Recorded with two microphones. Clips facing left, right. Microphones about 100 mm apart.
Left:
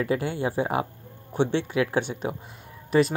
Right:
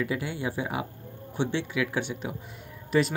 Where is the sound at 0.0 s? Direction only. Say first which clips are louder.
Left 4 dB; 40° left (ahead or behind).